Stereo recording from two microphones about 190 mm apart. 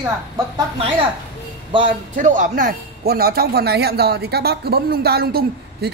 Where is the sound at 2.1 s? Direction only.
40° right (ahead or behind).